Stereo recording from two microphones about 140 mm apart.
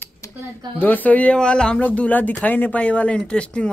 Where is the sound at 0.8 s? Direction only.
15° left (ahead or behind).